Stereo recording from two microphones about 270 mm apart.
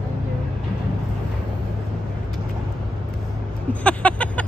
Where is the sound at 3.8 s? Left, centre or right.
Centre.